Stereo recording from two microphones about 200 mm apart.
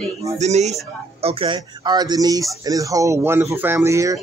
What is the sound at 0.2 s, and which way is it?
Speech, 35° right (ahead or behind).